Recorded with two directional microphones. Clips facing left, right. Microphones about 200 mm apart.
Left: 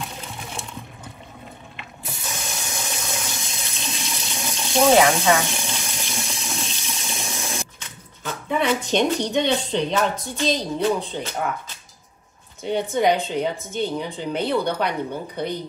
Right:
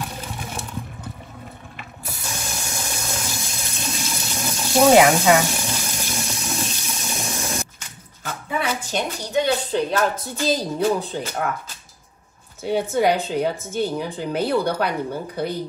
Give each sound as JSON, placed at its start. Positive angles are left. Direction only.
{"t": 0.0, "sound": "a sound", "side_deg": -5}
{"t": 2.5, "sound": "water", "side_deg": 0}
{"t": 6.9, "sound": "toilet flush", "side_deg": 0}
{"t": 8.5, "sound": "speech", "side_deg": -5}
{"t": 12.6, "sound": "speech", "side_deg": -5}